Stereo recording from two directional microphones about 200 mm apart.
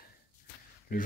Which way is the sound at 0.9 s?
45° left (ahead or behind).